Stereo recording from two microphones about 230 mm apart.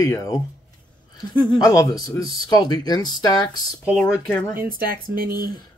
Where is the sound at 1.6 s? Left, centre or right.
Centre.